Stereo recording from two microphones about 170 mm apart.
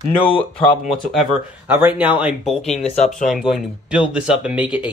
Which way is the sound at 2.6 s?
40° left (ahead or behind).